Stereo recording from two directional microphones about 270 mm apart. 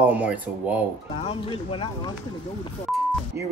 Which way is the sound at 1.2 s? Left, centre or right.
Centre.